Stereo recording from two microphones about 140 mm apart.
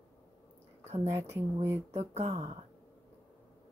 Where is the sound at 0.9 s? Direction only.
40° right (ahead or behind).